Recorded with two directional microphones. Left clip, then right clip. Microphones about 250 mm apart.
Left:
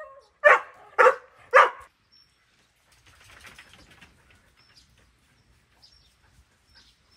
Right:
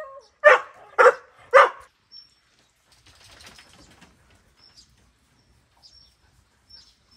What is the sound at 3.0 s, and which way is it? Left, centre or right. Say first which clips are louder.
Typing: right 1 dB; right.